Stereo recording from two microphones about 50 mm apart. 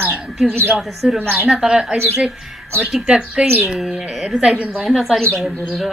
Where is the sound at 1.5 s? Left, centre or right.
Centre.